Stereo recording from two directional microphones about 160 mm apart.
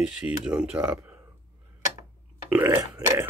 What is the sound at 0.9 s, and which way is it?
Speech, 15° right (ahead or behind).